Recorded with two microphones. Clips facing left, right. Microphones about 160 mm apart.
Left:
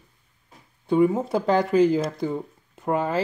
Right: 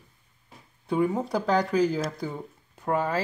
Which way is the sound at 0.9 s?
Centre (ahead or behind).